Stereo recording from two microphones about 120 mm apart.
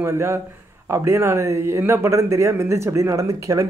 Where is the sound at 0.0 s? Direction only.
20° right (ahead or behind).